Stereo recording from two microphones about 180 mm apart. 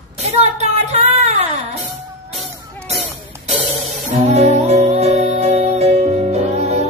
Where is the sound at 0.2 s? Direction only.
35° right (ahead or behind).